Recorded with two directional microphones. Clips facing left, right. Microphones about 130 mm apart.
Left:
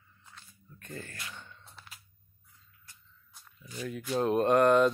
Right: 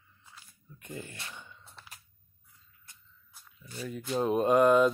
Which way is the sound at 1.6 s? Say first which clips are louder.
Even; centre (ahead or behind).